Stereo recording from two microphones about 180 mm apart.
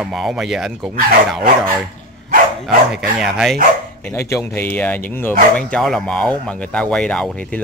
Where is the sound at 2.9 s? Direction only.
Centre (ahead or behind).